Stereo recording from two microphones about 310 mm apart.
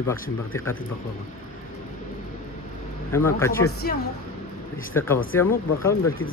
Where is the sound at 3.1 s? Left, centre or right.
Centre.